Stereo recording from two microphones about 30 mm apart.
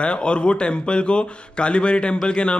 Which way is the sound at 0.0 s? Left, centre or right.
Left.